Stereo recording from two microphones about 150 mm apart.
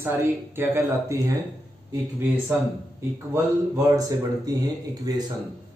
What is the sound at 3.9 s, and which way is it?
A man's voice, 25° right (ahead or behind).